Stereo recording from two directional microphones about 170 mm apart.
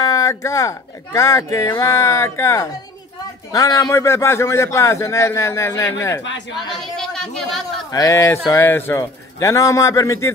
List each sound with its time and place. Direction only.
0.0 s a man's voice: 20° left (ahead or behind)
6.7 s speech: 5° left (ahead or behind)
7.9 s a man's voice: 20° left (ahead or behind)